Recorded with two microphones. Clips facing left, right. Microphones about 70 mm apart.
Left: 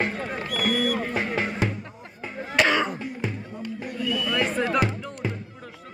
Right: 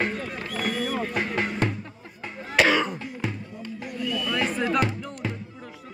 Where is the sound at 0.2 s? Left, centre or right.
Left.